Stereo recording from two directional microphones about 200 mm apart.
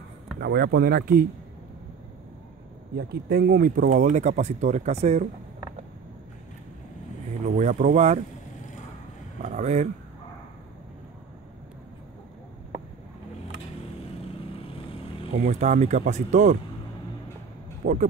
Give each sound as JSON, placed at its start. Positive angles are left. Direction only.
{"t": 0.4, "sound": "speech", "side_deg": -55}
{"t": 3.0, "sound": "speech", "side_deg": -50}
{"t": 7.4, "sound": "speech", "side_deg": -35}
{"t": 9.4, "sound": "a sound", "side_deg": -35}
{"t": 15.3, "sound": "speech", "side_deg": -40}
{"t": 17.8, "sound": "speech", "side_deg": -40}